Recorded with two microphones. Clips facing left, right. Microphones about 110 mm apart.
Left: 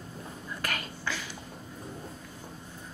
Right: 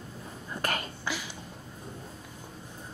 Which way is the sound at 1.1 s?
15° right (ahead or behind).